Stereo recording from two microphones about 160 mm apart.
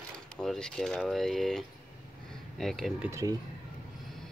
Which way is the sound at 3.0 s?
15° right (ahead or behind).